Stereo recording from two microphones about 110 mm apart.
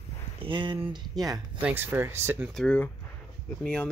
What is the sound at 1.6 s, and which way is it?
Speech, 15° right (ahead or behind).